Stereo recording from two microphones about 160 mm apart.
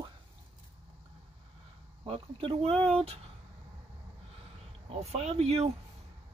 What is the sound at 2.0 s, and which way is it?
Speech, 35° right (ahead or behind).